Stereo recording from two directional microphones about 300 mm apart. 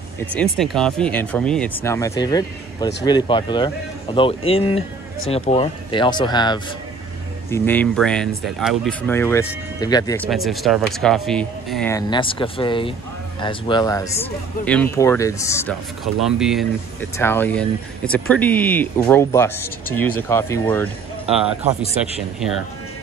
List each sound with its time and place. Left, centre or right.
0.3 s speech: centre
10.2 s speech: centre